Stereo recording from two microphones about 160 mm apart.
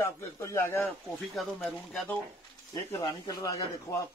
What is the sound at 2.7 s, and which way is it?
Speech, 20° left (ahead or behind).